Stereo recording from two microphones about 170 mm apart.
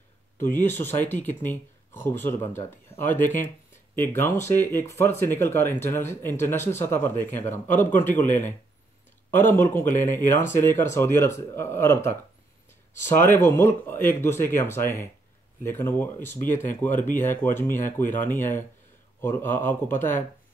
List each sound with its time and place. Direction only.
0.4 s speech: 15° left (ahead or behind)